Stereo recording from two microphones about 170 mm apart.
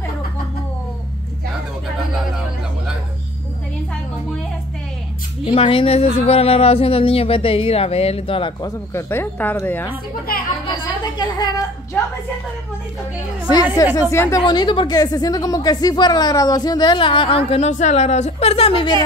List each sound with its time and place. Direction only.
5.4 s speech: 30° left (ahead or behind); by 9.9 s 15° left (ahead or behind)
11.1 s speech: 25° left (ahead or behind)
13.8 s a woman's voice: 20° left (ahead or behind)
14.4 s a woman's voice: 25° left (ahead or behind)